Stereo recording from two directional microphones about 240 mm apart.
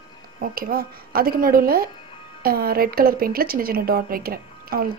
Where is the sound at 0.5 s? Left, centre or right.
Right.